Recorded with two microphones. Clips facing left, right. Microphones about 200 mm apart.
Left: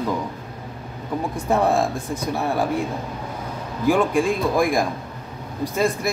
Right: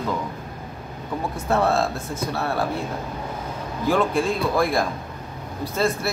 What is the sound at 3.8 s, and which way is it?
Speech, 15° left (ahead or behind).